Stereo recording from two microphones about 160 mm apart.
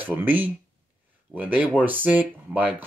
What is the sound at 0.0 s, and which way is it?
Speech, 10° right (ahead or behind).